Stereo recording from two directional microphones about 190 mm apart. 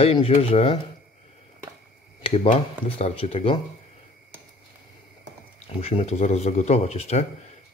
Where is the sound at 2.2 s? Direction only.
30° left (ahead or behind).